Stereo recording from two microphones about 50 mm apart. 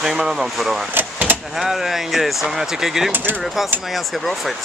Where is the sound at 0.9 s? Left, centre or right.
Right.